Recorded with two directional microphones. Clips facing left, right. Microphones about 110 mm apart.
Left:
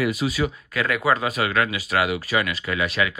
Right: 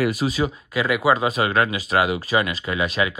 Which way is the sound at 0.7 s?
15° right (ahead or behind).